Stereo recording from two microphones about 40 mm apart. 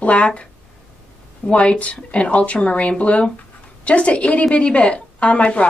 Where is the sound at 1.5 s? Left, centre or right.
Left.